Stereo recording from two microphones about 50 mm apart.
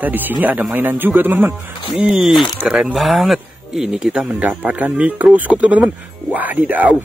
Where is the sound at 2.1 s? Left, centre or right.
Centre.